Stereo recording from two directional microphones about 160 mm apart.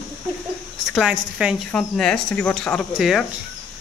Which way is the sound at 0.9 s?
5° right (ahead or behind).